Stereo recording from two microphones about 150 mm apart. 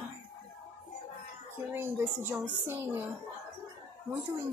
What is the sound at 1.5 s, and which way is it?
A woman's voice, 15° right (ahead or behind).